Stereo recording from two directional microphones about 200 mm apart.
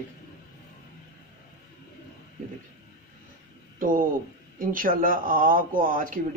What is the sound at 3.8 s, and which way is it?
Speech, 45° right (ahead or behind).